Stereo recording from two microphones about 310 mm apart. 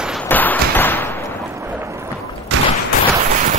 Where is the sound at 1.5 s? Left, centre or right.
Centre.